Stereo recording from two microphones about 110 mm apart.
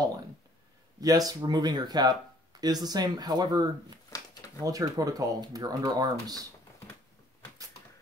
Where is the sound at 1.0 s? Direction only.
35° right (ahead or behind).